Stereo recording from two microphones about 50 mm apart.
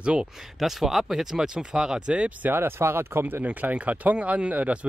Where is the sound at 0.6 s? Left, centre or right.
Centre.